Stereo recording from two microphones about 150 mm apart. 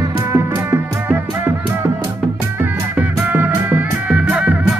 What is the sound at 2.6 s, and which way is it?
Music, 10° right (ahead or behind).